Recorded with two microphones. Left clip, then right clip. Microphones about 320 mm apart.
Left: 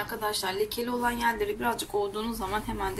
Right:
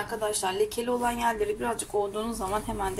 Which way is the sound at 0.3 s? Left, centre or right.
Centre.